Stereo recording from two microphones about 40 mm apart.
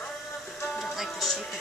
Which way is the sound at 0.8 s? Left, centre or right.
Centre.